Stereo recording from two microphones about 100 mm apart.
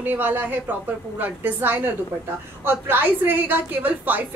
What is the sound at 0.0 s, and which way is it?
A woman's voice, 20° right (ahead or behind).